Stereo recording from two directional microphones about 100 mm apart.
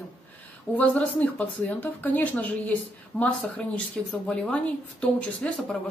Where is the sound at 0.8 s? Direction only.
10° left (ahead or behind).